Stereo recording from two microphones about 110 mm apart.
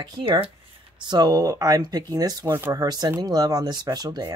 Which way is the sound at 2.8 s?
40° right (ahead or behind).